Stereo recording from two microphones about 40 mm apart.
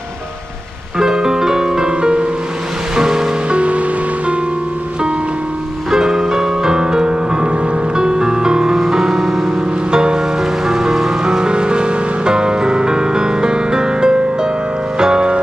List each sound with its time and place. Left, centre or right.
0.9 s music: centre
3.4 s music: right
5.9 s music: centre